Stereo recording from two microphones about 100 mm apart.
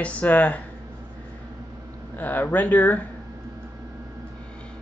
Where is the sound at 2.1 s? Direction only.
15° left (ahead or behind).